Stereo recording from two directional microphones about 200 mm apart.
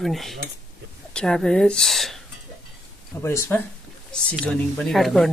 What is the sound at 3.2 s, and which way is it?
Speech, 10° left (ahead or behind).